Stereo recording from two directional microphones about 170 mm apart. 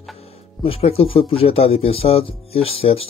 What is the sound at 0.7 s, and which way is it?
Speech, 35° left (ahead or behind).